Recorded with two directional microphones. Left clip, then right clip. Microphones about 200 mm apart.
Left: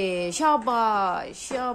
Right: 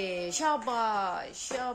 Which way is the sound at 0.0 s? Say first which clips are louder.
Left 7 dB; 30° left (ahead or behind).